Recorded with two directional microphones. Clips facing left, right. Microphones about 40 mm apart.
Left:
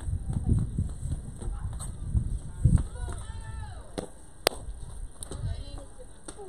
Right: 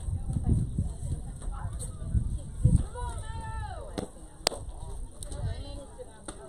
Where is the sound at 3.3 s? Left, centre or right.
Centre.